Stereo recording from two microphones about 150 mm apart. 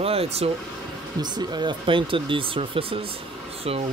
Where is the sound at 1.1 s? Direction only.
30° right (ahead or behind).